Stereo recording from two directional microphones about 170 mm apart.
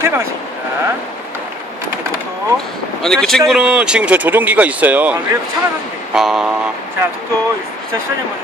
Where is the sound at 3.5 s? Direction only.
5° right (ahead or behind).